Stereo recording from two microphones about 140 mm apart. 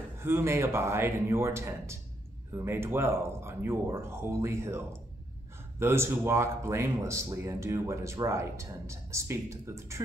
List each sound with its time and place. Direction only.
0.2 s speech: 20° right (ahead or behind)